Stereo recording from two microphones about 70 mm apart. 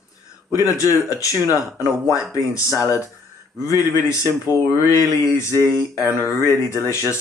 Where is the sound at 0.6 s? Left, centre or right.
Left.